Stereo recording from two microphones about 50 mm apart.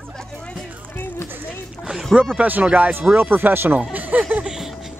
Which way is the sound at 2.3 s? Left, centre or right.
Right.